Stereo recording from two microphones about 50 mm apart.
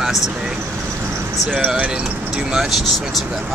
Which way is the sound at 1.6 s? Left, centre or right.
Right.